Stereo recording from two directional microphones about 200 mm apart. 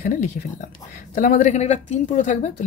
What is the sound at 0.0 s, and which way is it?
Speech, 40° left (ahead or behind).